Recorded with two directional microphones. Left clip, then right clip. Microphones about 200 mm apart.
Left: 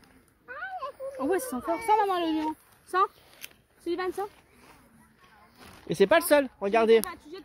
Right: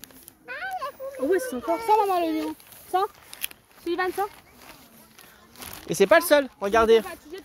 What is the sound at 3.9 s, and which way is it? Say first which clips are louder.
Speech: right 5 dB; 10° right (ahead or behind).